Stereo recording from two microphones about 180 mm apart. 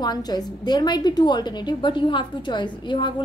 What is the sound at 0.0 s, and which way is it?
A woman's voice, 25° left (ahead or behind).